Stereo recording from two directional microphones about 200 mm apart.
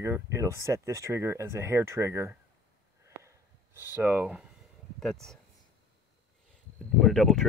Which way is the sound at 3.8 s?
10° right (ahead or behind).